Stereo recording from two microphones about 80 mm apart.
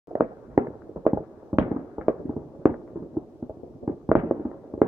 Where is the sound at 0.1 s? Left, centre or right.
Right.